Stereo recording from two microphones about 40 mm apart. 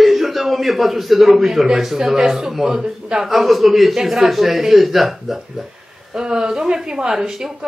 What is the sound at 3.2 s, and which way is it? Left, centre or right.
Speech, centre.